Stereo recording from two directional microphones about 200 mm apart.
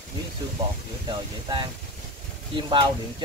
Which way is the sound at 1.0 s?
25° right (ahead or behind).